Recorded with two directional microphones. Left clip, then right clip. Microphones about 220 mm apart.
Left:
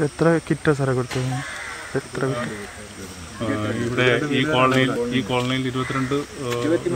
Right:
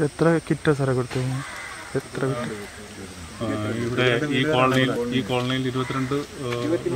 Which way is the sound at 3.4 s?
5° left (ahead or behind).